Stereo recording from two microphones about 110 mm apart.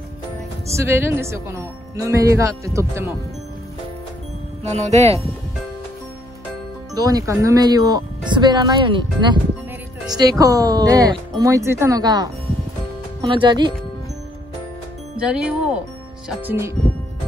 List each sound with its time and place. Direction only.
0.7 s a woman's voice: 20° right (ahead or behind)
4.6 s speech: 80° right
7.0 s speech: 35° right (ahead or behind)
10.0 s speech: 35° right (ahead or behind)
12.0 s speech: 40° right (ahead or behind)
13.3 s speech: 45° right (ahead or behind)
15.1 s speech: 10° right (ahead or behind)
16.3 s a woman's voice: 20° right (ahead or behind)